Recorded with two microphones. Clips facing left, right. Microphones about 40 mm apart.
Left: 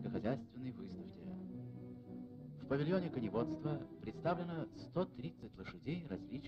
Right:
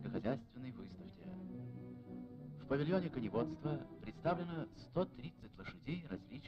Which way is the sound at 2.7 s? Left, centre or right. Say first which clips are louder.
Even; centre.